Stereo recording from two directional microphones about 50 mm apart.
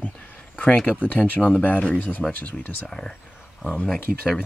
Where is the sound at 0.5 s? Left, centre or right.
Left.